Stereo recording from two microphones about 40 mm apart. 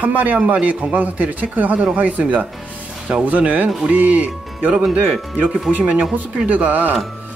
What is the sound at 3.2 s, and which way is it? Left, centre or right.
Speech, right.